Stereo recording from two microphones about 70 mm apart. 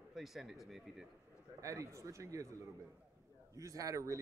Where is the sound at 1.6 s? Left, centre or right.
Right.